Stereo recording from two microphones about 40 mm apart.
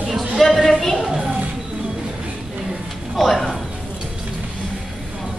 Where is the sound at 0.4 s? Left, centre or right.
Centre.